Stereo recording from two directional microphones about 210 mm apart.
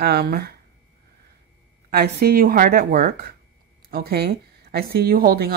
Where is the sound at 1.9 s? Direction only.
45° right (ahead or behind).